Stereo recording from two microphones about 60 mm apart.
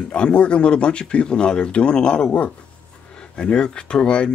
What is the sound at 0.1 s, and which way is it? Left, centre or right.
Speech, centre.